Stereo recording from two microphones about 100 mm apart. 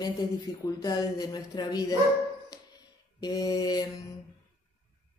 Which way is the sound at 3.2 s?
35° left (ahead or behind).